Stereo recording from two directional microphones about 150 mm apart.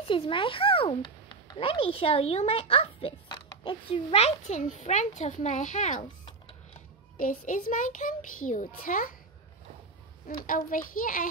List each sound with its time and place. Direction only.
0.0 s a child's voice: 35° left (ahead or behind); by 6.0 s 55° left (ahead or behind)
7.2 s a child's voice: 65° left (ahead or behind)
10.2 s a child's voice: 65° left (ahead or behind)